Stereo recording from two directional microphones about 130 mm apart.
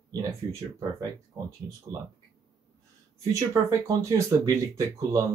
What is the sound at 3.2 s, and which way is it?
Speech, 25° right (ahead or behind).